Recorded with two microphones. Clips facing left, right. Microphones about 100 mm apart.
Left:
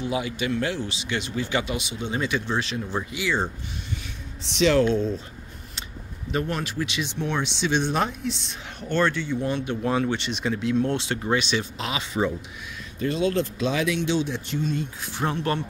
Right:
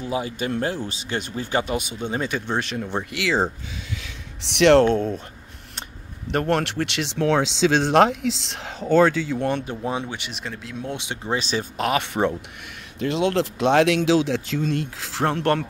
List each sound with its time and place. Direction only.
0.0 s speech: 40° right (ahead or behind)
3.1 s speech: 90° right
4.4 s speech: 70° right (ahead or behind); by 5.2 s 55° right (ahead or behind)
6.3 s speech: 70° right (ahead or behind); by 8.7 s 90° right
9.8 s speech: 15° right (ahead or behind)
11.0 s speech: 15° right (ahead or behind)
11.3 s speech: 40° right (ahead or behind)
11.9 s speech: 60° right (ahead or behind)
13.0 s speech: 75° right (ahead or behind)